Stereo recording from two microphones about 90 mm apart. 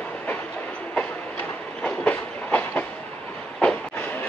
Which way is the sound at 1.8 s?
15° left (ahead or behind).